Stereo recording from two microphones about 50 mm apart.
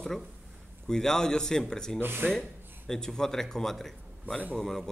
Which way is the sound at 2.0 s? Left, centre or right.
Right.